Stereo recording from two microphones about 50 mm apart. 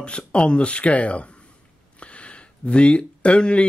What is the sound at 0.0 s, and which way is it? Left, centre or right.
Speech, left.